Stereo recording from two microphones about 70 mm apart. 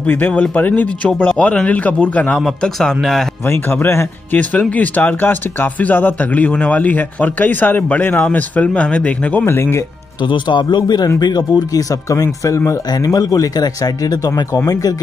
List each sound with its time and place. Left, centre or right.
0.0 s speech: left
2.3 s speech: centre
3.4 s speech: left
4.4 s speech: centre
9.5 s speech: left
10.7 s speech: left
11.1 s speech: left
12.9 s speech: left